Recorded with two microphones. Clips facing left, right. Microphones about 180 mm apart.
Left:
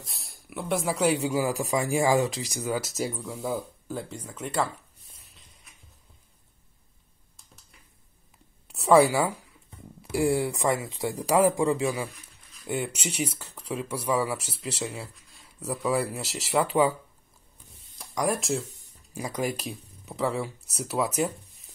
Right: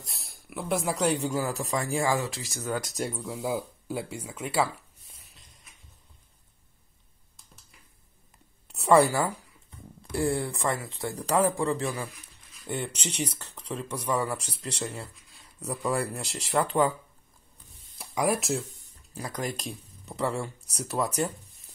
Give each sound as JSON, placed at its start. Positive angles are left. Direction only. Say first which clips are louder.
{"t": 0.0, "sound": "speech", "louder": "left 1 dB", "side_deg": 0}
{"t": 5.3, "sound": "a sound", "louder": "even", "side_deg": 0}
{"t": 7.3, "sound": "a sound", "louder": "even", "side_deg": 0}
{"t": 8.7, "sound": "a woman's voice", "louder": "left 2 dB", "side_deg": 0}
{"t": 17.9, "sound": "speech", "louder": "right 1 dB", "side_deg": -5}
{"t": 19.1, "sound": "speech", "louder": "left 4 dB", "side_deg": 10}